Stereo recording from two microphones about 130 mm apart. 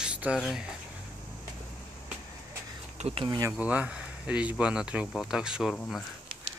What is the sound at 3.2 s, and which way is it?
Speech, 30° right (ahead or behind).